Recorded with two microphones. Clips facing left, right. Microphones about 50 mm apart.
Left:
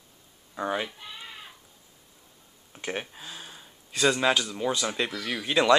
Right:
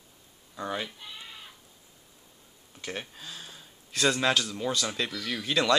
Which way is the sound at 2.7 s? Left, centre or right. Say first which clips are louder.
Left 4 dB; left.